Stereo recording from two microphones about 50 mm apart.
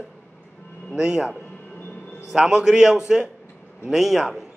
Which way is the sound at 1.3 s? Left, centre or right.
Left.